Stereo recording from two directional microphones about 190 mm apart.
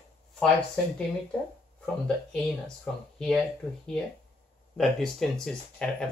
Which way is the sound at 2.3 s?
Centre (ahead or behind).